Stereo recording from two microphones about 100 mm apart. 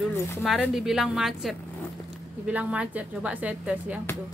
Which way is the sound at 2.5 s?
15° right (ahead or behind).